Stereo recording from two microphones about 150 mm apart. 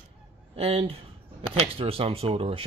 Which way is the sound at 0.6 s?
40° right (ahead or behind).